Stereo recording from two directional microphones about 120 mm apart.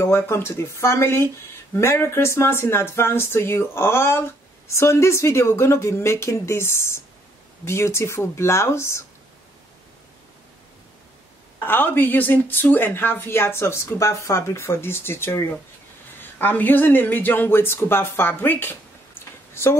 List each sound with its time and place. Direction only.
0.0 s a woman's voice: 20° left (ahead or behind)
11.6 s a woman's voice: 15° left (ahead or behind)